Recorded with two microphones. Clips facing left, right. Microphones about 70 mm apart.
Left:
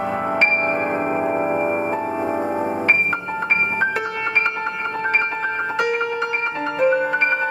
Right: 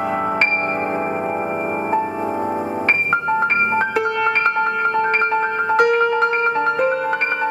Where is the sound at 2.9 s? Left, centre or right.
Right.